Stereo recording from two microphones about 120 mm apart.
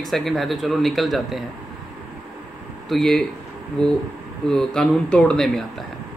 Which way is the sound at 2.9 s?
5° left (ahead or behind).